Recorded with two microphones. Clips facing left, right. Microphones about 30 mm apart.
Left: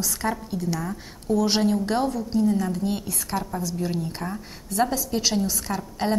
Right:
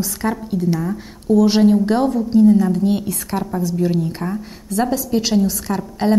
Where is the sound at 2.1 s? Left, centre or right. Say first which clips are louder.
Right 10 dB; right.